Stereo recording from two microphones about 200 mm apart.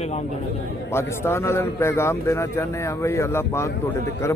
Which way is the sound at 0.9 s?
15° left (ahead or behind).